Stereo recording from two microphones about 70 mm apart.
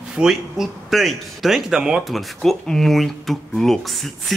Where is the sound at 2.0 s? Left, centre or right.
Centre.